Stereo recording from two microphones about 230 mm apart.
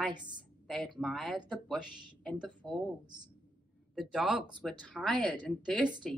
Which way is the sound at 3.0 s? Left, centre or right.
Centre.